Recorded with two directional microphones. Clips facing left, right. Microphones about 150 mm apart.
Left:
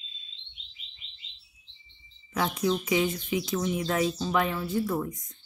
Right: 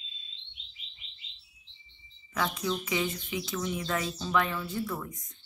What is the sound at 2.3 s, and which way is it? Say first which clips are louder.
Speech: left 4 dB; 20° left (ahead or behind).